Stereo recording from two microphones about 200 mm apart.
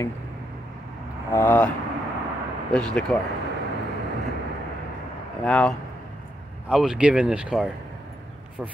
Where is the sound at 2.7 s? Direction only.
5° left (ahead or behind).